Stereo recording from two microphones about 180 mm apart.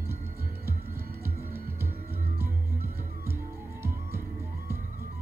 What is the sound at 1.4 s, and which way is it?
Music, 10° right (ahead or behind).